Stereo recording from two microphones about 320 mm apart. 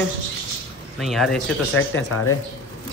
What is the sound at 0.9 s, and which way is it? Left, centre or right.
Speech, centre.